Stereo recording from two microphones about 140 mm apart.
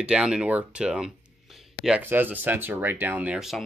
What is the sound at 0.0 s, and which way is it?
Speech, 5° right (ahead or behind).